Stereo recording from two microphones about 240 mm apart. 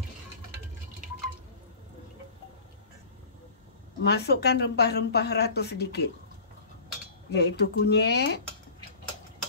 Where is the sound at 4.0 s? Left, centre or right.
Left.